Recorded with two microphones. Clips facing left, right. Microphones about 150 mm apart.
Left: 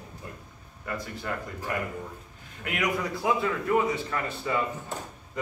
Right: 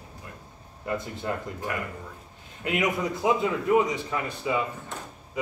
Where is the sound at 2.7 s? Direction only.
20° right (ahead or behind).